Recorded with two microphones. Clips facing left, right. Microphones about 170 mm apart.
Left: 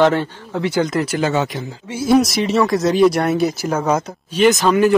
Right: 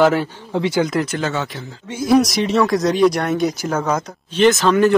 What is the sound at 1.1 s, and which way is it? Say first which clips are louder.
Speech: left 4 dB; 15° left (ahead or behind).